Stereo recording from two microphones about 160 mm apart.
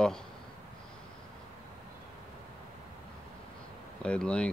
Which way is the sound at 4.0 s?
5° left (ahead or behind).